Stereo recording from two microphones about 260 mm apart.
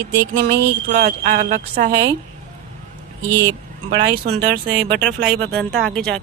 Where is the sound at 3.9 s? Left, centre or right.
Right.